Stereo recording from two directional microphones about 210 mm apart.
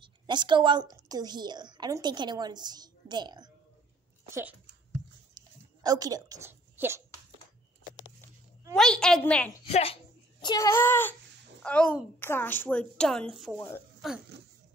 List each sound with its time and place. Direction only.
0.0 s a woman's voice: 20° right (ahead or behind)
5.3 s a sound: 20° right (ahead or behind)
8.7 s a woman's voice: 5° left (ahead or behind)
9.7 s a woman's voice: 30° left (ahead or behind)
10.4 s a child's voice: 15° left (ahead or behind); by 13.6 s centre (ahead or behind)
13.6 s a child's voice: 10° left (ahead or behind)